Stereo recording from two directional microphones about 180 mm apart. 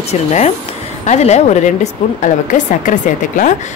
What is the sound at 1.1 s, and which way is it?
A woman's voice, 40° left (ahead or behind).